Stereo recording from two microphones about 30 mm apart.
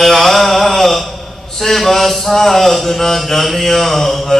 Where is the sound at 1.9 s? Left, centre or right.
Centre.